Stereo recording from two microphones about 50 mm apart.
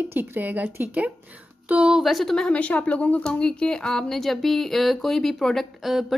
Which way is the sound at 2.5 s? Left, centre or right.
Left.